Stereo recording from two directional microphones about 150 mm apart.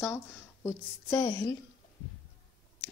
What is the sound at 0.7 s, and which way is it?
Speech, 15° left (ahead or behind).